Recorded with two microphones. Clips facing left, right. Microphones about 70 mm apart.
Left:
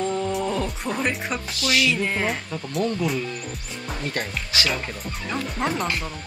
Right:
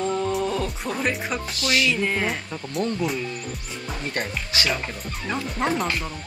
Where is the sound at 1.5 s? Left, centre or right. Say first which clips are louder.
Left 1 dB; right.